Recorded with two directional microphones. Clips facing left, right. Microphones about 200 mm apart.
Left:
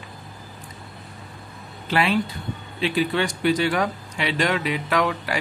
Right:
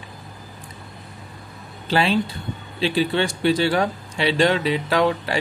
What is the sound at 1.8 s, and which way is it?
Speech, 30° right (ahead or behind).